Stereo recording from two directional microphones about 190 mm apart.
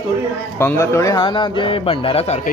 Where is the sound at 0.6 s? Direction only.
15° left (ahead or behind); by 2.4 s 35° left (ahead or behind).